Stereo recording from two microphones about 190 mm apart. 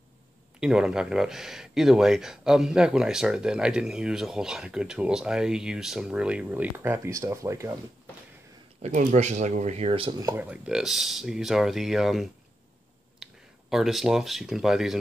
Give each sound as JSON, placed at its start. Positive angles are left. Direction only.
{"t": 0.6, "sound": "speech", "side_deg": -5}
{"t": 8.8, "sound": "speech", "side_deg": -40}
{"t": 10.4, "sound": "speech", "side_deg": -5}